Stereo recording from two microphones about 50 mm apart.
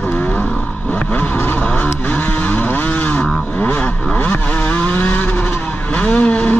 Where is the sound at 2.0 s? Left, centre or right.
Left.